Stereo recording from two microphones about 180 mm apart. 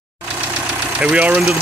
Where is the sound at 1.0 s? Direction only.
5° right (ahead or behind).